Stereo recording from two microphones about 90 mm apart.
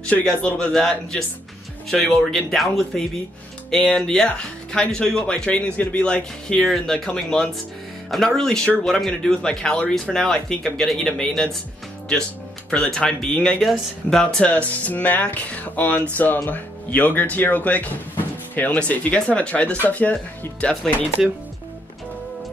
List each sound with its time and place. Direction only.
0.0 s speech: 10° left (ahead or behind)
6.6 s speech: centre (ahead or behind)
12.7 s speech: 10° left (ahead or behind)